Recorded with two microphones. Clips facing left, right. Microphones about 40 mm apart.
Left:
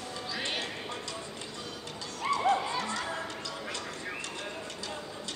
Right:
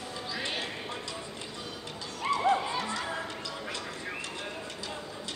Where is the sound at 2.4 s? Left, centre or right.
Centre.